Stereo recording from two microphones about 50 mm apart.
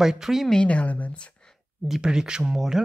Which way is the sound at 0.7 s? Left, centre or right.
Left.